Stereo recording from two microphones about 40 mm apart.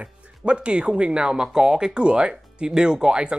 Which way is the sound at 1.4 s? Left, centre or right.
Centre.